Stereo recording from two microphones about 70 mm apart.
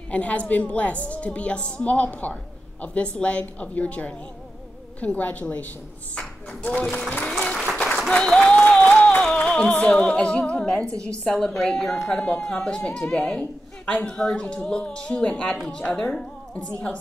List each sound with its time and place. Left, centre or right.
0.1 s a woman's voice: centre
7.7 s applause: centre
8.1 s music: centre
11.1 s a woman's voice: centre